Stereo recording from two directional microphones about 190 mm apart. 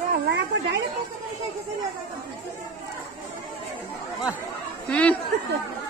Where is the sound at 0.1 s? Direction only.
55° right (ahead or behind).